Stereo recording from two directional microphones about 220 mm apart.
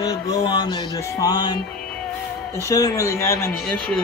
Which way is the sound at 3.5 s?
Centre (ahead or behind).